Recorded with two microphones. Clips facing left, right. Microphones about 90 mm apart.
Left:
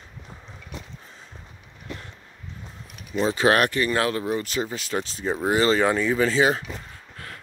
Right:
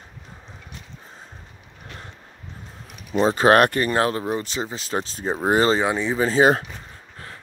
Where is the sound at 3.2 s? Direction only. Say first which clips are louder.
Right 4 dB; 35° right (ahead or behind).